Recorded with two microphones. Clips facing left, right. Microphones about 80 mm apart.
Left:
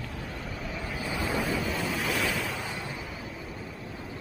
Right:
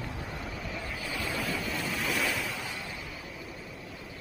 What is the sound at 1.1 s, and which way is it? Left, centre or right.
Waves, left.